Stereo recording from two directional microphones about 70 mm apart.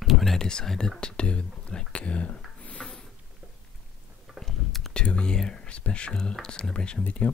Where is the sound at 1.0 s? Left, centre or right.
Centre.